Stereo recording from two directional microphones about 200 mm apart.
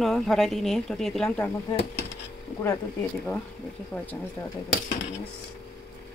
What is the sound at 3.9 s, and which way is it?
Speech, 10° left (ahead or behind).